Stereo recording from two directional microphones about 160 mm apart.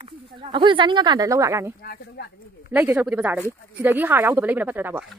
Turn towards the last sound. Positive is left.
turn(degrees=-10)  # may be behind; listen again after turning